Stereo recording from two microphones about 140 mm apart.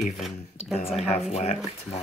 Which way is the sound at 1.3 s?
50° left (ahead or behind).